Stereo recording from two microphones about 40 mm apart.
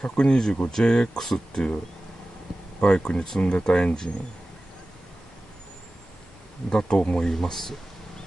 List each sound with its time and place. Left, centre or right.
0.0 s speech: left
2.8 s speech: left
6.7 s speech: left
7.3 s speech: centre